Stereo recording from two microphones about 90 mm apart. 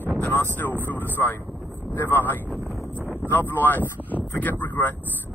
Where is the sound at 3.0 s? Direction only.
20° right (ahead or behind).